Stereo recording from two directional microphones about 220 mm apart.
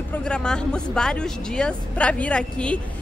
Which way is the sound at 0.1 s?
5° left (ahead or behind).